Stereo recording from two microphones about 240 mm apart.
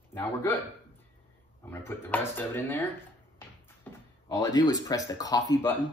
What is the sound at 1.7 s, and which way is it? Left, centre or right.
Speech, centre.